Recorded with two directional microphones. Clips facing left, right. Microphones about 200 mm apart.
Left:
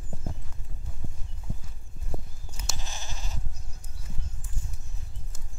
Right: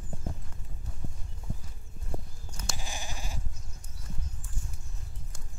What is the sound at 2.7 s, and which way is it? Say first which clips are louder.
Sheep: right 2 dB; 15° right (ahead or behind).